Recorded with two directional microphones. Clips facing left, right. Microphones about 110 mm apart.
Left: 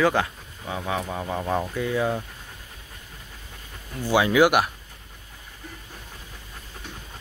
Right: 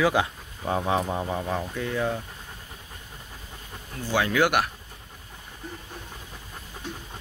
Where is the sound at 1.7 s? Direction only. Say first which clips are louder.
Left 3 dB; 5° left (ahead or behind).